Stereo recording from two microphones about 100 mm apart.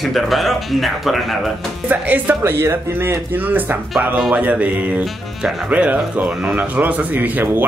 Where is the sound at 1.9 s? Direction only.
15° right (ahead or behind).